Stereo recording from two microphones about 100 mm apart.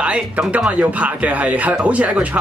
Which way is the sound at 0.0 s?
10° right (ahead or behind).